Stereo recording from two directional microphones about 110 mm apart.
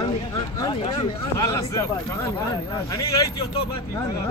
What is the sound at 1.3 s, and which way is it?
Speech, 30° left (ahead or behind).